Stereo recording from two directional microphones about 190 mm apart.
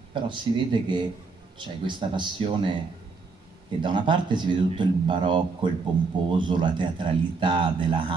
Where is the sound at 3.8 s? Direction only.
25° right (ahead or behind).